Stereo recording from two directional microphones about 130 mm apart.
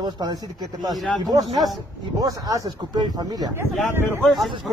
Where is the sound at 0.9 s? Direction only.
Centre (ahead or behind).